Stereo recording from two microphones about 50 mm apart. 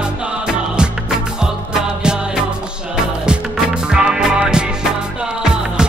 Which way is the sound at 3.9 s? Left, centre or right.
Centre.